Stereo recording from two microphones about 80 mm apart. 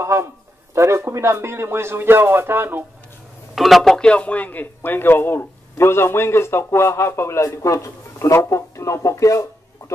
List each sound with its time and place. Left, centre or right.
0.0 s speech: right
3.5 s a man's voice: centre; by 9.9 s left